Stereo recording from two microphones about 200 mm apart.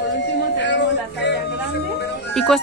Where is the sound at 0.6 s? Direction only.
60° left (ahead or behind).